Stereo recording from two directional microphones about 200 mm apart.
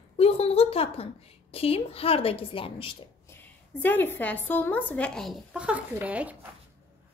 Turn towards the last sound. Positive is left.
turn(degrees=-5)  # may be behind; listen again after turning